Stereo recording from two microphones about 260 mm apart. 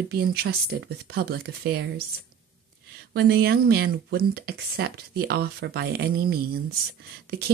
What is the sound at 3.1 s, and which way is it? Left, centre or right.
Speech, right.